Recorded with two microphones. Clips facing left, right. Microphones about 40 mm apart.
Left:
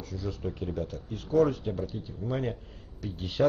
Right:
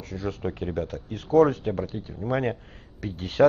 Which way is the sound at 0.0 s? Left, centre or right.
Right.